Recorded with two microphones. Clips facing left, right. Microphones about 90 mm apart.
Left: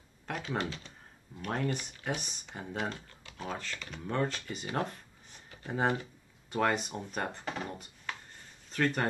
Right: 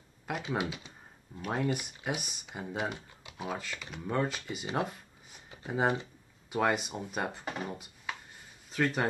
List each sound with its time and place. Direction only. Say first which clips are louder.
0.4 s speech: right 1 dB; 15° right (ahead or behind)
4.7 s a sound: right 1 dB; 5° right (ahead or behind)
5.7 s speech: right 1 dB; 10° right (ahead or behind)